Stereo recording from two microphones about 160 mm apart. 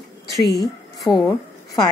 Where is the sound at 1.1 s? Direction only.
Centre (ahead or behind).